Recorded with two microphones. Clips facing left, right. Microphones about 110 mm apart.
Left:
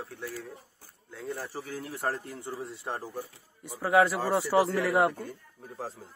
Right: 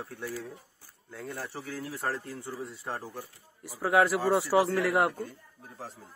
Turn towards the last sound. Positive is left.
turn(degrees=0)  # may be behind; listen again after turning